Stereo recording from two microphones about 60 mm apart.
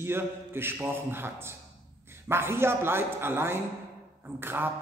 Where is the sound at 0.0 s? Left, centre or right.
Right.